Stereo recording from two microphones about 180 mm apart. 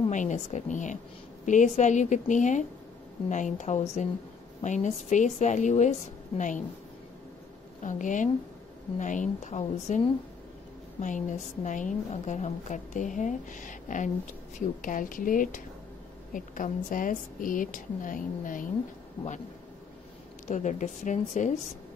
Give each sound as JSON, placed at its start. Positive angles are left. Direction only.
{"t": 0.1, "sound": "a woman's voice", "side_deg": 45}
{"t": 7.8, "sound": "a woman's voice", "side_deg": 45}
{"t": 19.2, "sound": "a man's voice", "side_deg": 25}
{"t": 20.4, "sound": "a woman's voice", "side_deg": 45}